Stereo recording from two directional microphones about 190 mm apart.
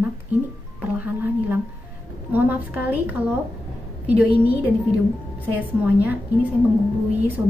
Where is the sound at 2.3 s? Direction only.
10° right (ahead or behind).